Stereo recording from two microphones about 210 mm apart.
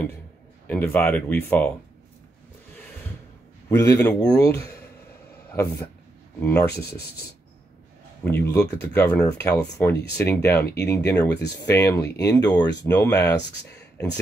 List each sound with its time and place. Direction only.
0.7 s speech: 10° left (ahead or behind)
3.6 s speech: 10° left (ahead or behind)
8.2 s speech: 10° left (ahead or behind)